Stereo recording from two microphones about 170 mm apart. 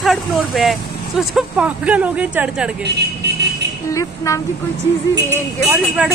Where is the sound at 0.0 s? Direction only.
Centre (ahead or behind).